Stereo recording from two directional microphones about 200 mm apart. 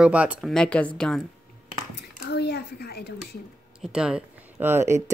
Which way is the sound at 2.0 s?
55° left (ahead or behind).